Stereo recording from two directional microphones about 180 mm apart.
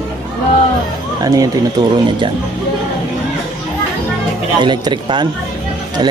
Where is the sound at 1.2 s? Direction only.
20° right (ahead or behind).